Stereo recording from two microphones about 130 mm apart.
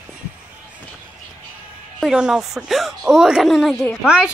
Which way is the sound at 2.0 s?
5° right (ahead or behind).